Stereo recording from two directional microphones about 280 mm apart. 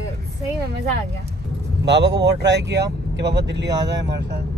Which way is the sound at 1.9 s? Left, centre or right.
Right.